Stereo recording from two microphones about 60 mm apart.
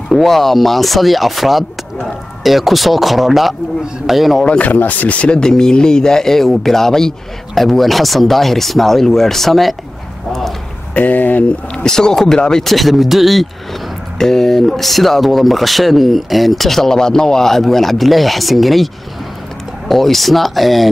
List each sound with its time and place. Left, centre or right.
0.1 s speech: centre
4.5 s speech: left; by 9.8 s centre
11.0 s speech: left
11.7 s speech: centre
19.9 s speech: centre